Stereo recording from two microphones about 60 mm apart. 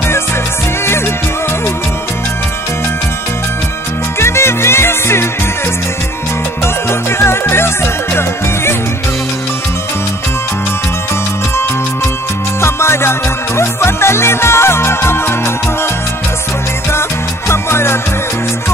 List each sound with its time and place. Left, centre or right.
4.2 s music: left
6.6 s music: left
12.6 s music: left
17.5 s music: left